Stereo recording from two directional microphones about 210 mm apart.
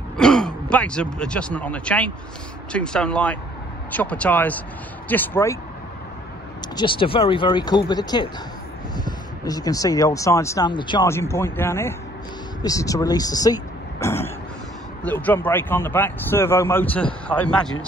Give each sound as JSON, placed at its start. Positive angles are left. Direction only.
{"t": 0.2, "sound": "speech", "side_deg": 5}
{"t": 6.8, "sound": "speech", "side_deg": 25}